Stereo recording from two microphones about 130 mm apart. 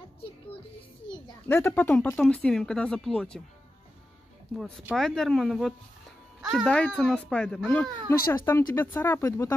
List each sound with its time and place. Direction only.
1.5 s speech: 15° left (ahead or behind)
4.9 s speech: 5° left (ahead or behind)
8.1 s speech: 20° left (ahead or behind)